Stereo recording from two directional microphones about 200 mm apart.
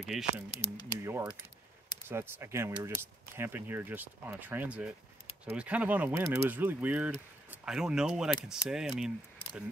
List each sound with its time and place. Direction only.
0.0 s speech: centre (ahead or behind)
0.5 s speech: 25° left (ahead or behind)
1.0 s speech: 15° right (ahead or behind)
9.4 s a sound: 25° left (ahead or behind)